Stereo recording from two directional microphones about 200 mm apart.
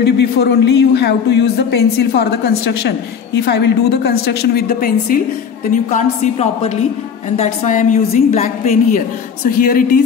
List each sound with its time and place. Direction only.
0.0 s a woman's voice: 55° left (ahead or behind)